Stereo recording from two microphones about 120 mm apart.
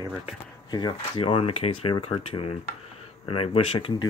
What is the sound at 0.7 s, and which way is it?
Speech, 35° left (ahead or behind).